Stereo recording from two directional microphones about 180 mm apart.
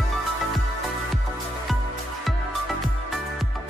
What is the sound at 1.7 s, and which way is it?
Music, centre (ahead or behind).